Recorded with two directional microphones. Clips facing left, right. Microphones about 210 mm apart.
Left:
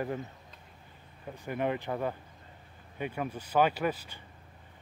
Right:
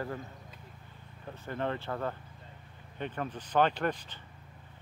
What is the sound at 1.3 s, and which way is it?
A man's voice, 15° left (ahead or behind).